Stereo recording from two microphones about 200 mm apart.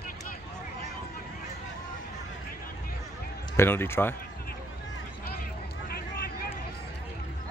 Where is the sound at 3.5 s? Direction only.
10° left (ahead or behind).